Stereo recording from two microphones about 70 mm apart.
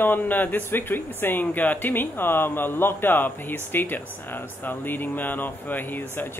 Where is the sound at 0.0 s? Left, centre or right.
Left.